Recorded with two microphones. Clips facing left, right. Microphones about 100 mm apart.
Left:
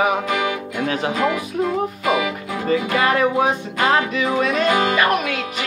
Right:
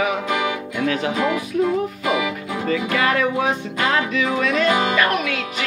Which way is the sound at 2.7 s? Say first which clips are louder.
Left 2 dB; 30° left (ahead or behind).